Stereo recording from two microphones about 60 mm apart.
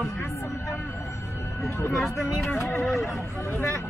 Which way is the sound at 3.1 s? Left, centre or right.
Left.